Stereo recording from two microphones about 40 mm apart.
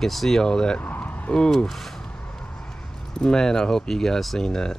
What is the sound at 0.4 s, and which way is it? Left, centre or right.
Speech, centre.